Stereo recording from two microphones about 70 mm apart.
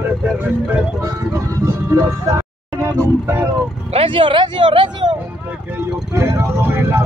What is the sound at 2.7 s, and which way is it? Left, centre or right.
Music, right.